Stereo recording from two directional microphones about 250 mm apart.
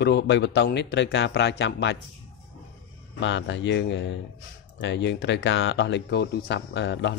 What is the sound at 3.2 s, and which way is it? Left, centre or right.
Speech, left.